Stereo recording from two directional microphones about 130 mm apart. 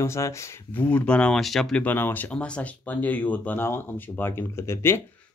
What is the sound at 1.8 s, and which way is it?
Speech, 15° left (ahead or behind).